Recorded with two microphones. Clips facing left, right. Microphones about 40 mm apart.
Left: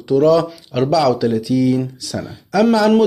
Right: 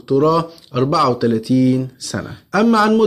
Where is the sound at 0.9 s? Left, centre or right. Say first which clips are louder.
Even; centre.